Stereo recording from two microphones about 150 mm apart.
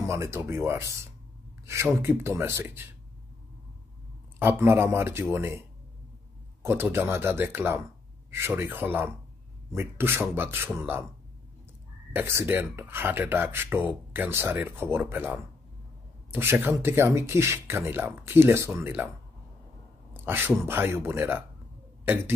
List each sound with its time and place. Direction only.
0.1 s speech: 20° right (ahead or behind)
2.0 s speech: 15° right (ahead or behind)
4.4 s speech: 15° right (ahead or behind)
6.6 s speech: 15° right (ahead or behind)
12.1 s speech: 15° right (ahead or behind)
20.2 s speech: 15° right (ahead or behind)
22.0 s throat clearing: 15° right (ahead or behind)